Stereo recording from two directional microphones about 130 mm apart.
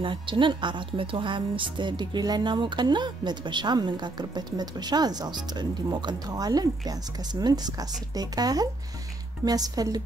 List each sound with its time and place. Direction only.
0.0 s speech: 40° right (ahead or behind)